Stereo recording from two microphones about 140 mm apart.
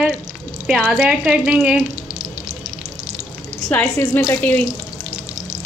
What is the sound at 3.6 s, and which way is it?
Sizzle, 10° left (ahead or behind).